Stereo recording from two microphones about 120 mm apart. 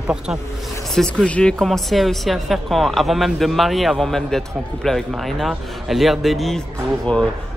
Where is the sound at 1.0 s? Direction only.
5° left (ahead or behind).